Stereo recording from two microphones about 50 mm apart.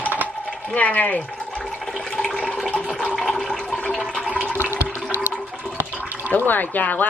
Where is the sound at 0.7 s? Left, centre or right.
Left.